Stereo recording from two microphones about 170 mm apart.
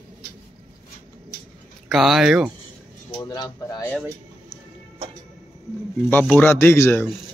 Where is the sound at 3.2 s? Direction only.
25° left (ahead or behind).